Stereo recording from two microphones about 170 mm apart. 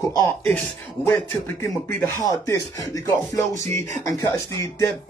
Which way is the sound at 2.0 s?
20° left (ahead or behind).